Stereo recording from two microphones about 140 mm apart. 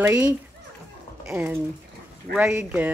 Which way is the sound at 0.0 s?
25° right (ahead or behind).